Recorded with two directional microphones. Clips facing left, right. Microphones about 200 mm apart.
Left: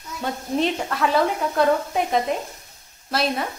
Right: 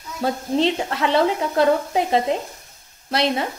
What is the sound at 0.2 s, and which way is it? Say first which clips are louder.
Speech: right 3 dB; 30° right (ahead or behind).